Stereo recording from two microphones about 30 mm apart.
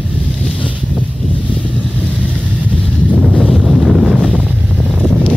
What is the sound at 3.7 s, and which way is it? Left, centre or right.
Wind noise, centre.